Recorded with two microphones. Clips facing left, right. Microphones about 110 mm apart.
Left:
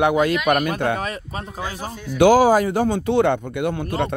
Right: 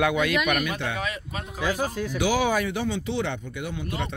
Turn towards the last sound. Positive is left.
turn(degrees=50)  # may be behind; listen again after turning